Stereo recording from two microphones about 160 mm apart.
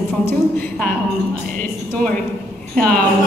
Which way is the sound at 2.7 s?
10° left (ahead or behind).